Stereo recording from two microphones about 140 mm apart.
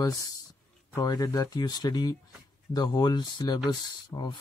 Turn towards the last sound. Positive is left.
turn(degrees=30)  # may be behind; listen again after turning